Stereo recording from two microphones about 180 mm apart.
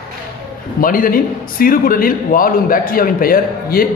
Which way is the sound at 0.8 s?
50° left (ahead or behind).